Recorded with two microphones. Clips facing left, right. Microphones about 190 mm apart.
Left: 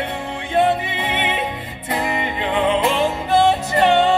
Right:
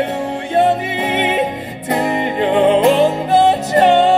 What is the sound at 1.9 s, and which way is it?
Music, 40° right (ahead or behind).